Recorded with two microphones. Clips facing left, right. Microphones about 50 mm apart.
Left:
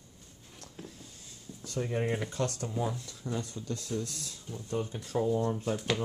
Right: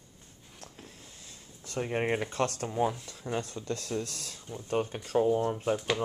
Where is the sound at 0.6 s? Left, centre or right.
Right.